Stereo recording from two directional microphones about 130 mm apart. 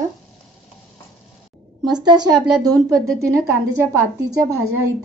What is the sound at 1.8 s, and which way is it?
A woman's voice, 35° right (ahead or behind).